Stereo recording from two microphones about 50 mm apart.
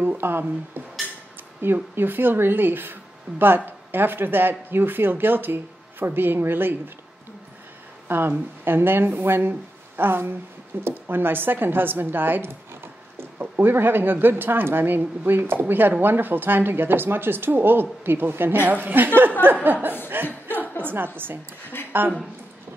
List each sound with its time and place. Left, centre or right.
0.0 s speech: right
8.1 s speech: right
18.6 s chuckle: right